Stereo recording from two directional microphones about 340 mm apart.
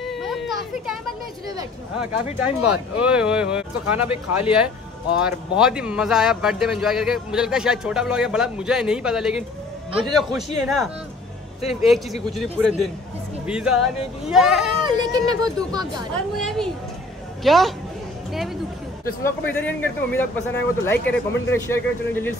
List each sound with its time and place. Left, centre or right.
0.1 s children playing: centre
1.6 s speech: centre
14.8 s speech: centre
16.3 s speech: centre
19.2 s speech: centre